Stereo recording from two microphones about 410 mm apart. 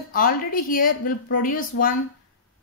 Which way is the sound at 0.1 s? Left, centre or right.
Left.